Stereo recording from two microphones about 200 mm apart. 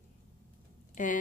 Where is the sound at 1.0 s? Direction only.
40° left (ahead or behind).